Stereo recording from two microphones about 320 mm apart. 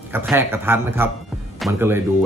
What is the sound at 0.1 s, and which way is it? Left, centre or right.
Speech, centre.